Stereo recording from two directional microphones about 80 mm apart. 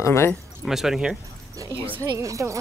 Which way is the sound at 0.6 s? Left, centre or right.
Centre.